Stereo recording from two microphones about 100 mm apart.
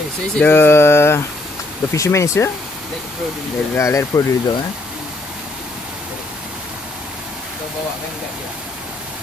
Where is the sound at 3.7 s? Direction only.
30° left (ahead or behind).